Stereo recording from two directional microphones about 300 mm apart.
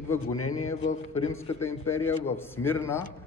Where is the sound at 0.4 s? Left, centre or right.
Left.